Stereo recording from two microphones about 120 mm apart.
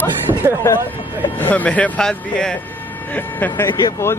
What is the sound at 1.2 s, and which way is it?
Speech, 15° left (ahead or behind).